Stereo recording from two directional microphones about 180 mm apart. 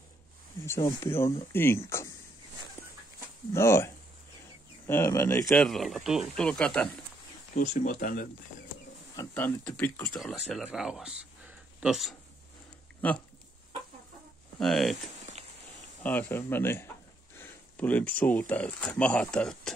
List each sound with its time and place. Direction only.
0.7 s speech: 15° left (ahead or behind)
3.5 s speech: 15° left (ahead or behind)
5.6 s speech: centre (ahead or behind)
7.5 s speech: 45° left (ahead or behind)
9.1 s speech: 15° left (ahead or behind)
10.5 s speech: 5° right (ahead or behind)
14.6 s speech: centre (ahead or behind)
15.4 s a sound: 35° right (ahead or behind)
16.0 s speech: 10° left (ahead or behind)